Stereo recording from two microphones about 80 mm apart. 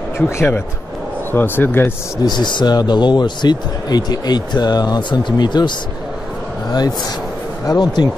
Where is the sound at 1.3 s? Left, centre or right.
Left.